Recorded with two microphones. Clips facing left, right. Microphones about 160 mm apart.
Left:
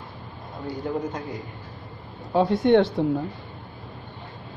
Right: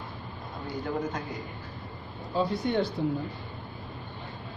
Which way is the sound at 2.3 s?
90° left.